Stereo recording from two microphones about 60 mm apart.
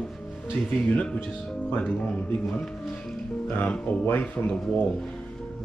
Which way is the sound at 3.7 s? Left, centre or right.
Left.